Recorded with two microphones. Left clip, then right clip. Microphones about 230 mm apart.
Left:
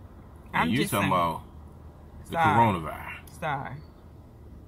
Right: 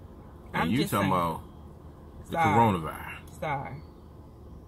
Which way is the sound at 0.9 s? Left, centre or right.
Centre.